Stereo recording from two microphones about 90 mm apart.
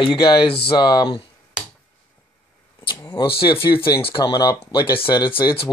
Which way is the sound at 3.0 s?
75° left (ahead or behind).